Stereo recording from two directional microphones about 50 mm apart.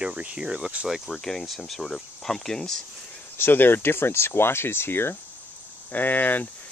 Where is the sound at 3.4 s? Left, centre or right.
Left.